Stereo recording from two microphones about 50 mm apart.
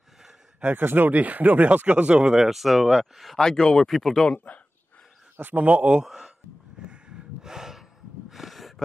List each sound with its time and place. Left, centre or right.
0.7 s speech: right
2.3 s speech: centre
3.4 s speech: centre
3.9 s speech: centre
5.4 s speech: right
6.0 s a sound: centre
6.9 s gasp: centre
8.3 s a sound: centre